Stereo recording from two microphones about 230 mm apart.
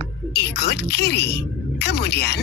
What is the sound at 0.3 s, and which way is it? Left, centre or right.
Speech, left.